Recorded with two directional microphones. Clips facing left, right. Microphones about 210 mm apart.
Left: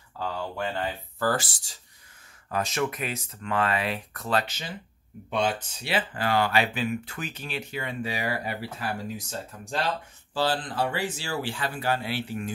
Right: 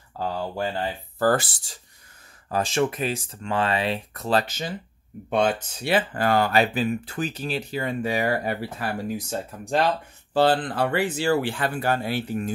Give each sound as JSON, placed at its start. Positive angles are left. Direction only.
{"t": 0.2, "sound": "speech", "side_deg": -35}
{"t": 1.3, "sound": "speech", "side_deg": -55}
{"t": 2.5, "sound": "speech", "side_deg": -30}
{"t": 4.4, "sound": "speech", "side_deg": -45}